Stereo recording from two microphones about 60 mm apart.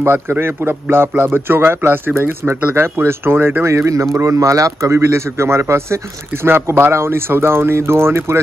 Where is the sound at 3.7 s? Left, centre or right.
Right.